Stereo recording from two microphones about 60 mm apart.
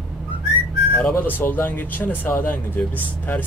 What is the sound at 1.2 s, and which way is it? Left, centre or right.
Speech, left.